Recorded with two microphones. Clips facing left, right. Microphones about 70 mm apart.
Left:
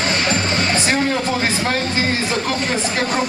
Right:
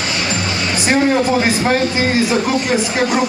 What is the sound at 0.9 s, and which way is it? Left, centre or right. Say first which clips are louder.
Speech: right 10 dB; centre.